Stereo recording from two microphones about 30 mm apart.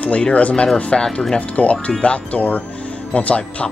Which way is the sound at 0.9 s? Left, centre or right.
Left.